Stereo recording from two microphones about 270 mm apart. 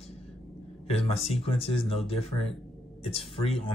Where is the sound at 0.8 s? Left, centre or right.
Left.